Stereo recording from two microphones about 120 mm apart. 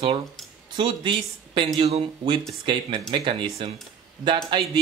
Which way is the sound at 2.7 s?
40° right (ahead or behind).